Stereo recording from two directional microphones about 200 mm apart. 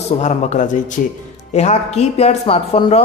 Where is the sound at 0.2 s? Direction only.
35° left (ahead or behind).